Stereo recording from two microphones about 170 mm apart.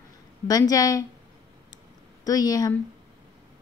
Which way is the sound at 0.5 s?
20° left (ahead or behind).